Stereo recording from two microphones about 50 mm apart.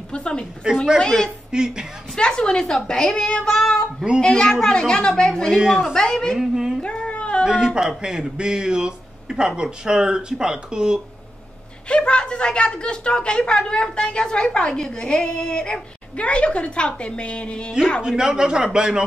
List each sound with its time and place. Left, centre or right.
0.1 s a woman's voice: centre
1.5 s a man's voice: centre
2.1 s a woman's voice: centre
6.3 s a man's voice: centre
6.8 s a sound: centre
7.6 s a man's voice: centre
11.9 s a woman's voice: left
18.0 s a man's voice: centre